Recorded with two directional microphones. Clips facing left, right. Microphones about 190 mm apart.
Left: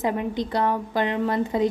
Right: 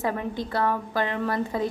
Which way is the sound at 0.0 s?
20° left (ahead or behind).